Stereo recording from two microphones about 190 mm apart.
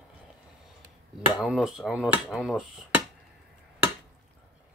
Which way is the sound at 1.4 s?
5° right (ahead or behind).